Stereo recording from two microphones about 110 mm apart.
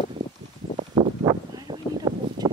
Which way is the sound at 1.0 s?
40° right (ahead or behind).